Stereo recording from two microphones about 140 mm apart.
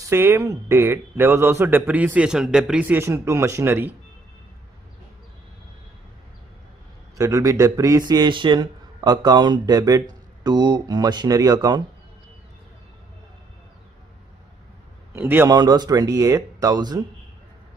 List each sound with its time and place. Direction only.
0.0 s speech: 20° right (ahead or behind)
7.2 s speech: 25° right (ahead or behind)
15.1 s speech: 15° right (ahead or behind)
15.5 s speech: 30° right (ahead or behind)